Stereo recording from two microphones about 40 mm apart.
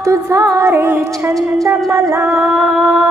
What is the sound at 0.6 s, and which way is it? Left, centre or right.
Music, right.